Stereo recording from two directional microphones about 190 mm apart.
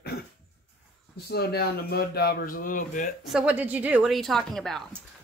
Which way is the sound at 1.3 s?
60° left (ahead or behind).